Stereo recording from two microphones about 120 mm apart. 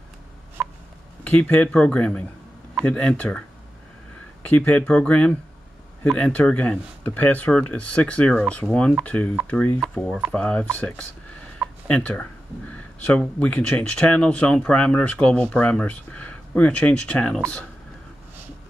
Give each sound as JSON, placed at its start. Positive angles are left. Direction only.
{"t": 0.6, "sound": "a sound", "side_deg": -5}
{"t": 1.2, "sound": "speech", "side_deg": 15}
{"t": 9.9, "sound": "speech", "side_deg": 0}